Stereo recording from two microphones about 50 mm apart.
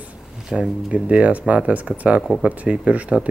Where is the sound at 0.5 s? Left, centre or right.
Centre.